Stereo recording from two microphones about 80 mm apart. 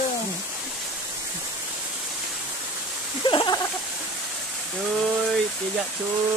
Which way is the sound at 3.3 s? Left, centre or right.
Left.